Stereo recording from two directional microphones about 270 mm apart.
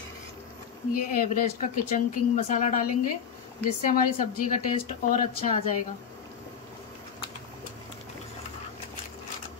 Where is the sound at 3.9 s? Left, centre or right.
Left.